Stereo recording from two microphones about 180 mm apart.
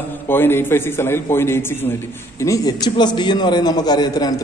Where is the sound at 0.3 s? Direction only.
10° left (ahead or behind).